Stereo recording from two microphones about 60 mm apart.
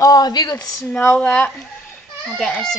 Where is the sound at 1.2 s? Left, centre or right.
Left.